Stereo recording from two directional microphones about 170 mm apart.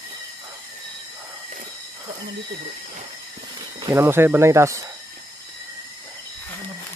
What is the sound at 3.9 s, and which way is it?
Speech, 15° right (ahead or behind).